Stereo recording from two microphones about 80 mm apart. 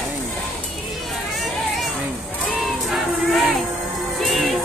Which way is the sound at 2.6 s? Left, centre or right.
Centre.